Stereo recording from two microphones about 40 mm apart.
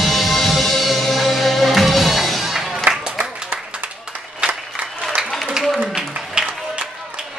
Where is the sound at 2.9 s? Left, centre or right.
Right.